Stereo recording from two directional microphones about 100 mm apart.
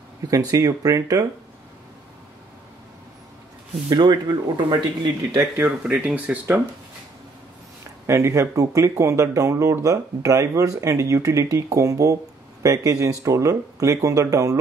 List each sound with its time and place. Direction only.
0.3 s speech: 35° right (ahead or behind)
3.9 s speech: 45° right (ahead or behind)
5.7 s speech: 15° right (ahead or behind)
8.1 s speech: 30° right (ahead or behind)